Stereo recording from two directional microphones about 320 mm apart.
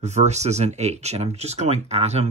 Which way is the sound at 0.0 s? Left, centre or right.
Right.